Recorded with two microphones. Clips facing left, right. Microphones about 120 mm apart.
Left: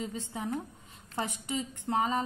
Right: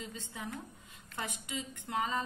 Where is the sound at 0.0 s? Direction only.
25° left (ahead or behind).